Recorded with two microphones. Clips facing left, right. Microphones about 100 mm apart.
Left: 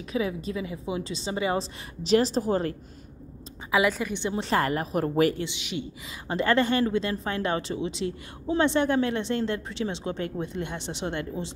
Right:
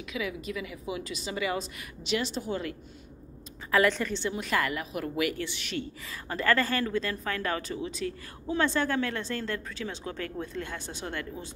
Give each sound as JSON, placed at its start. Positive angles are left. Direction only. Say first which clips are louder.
{"t": 0.1, "sound": "a woman's voice", "louder": "left 6 dB", "side_deg": 30}
{"t": 3.7, "sound": "a woman's voice", "louder": "left 1 dB", "side_deg": 10}
{"t": 4.3, "sound": "a woman's voice", "louder": "left 6 dB", "side_deg": 30}
{"t": 5.4, "sound": "a woman's voice", "louder": "left 2 dB", "side_deg": 15}